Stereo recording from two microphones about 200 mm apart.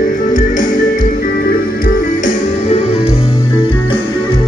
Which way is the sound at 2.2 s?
30° left (ahead or behind).